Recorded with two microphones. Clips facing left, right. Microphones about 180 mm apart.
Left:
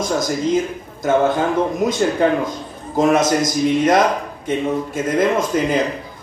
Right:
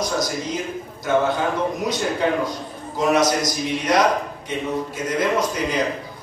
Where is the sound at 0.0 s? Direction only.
50° left (ahead or behind).